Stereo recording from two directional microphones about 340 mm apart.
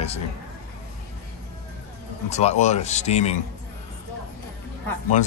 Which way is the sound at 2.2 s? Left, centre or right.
Centre.